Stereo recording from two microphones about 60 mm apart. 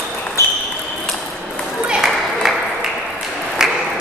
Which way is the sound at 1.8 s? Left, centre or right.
Centre.